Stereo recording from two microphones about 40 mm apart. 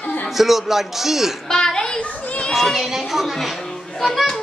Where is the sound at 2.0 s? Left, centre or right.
Left.